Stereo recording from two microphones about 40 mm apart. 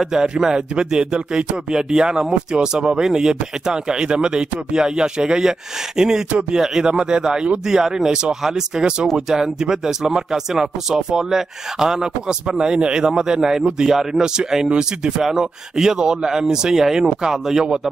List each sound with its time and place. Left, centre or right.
0.4 s speech: centre
7.6 s speech: centre
15.2 s speech: centre